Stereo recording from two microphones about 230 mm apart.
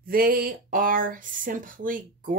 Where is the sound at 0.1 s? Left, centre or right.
Right.